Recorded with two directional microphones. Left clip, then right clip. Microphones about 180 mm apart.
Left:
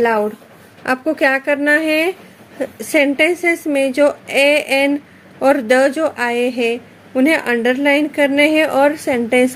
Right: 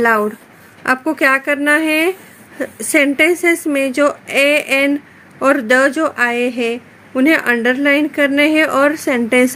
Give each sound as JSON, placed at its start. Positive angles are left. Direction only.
{"t": 0.0, "sound": "a woman's voice", "side_deg": -20}